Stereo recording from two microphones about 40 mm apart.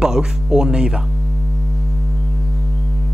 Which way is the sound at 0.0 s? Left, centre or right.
Centre.